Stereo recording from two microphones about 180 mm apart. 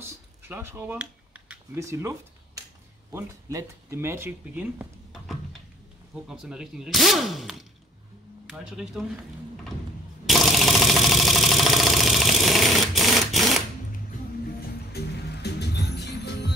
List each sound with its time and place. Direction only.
0.0 s a sound: 15° right (ahead or behind)
3.1 s speech: 15° right (ahead or behind)
6.2 s speech: 5° right (ahead or behind)
10.2 s engine: centre (ahead or behind)
14.9 s music: 65° left (ahead or behind)